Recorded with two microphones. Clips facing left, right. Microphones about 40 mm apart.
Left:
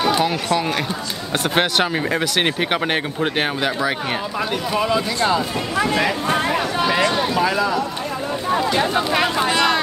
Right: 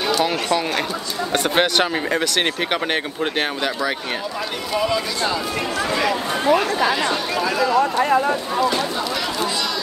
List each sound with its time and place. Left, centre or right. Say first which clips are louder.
0.2 s speech: even; centre
4.7 s speech: left 1 dB; left
8.7 s speech: left 4 dB; left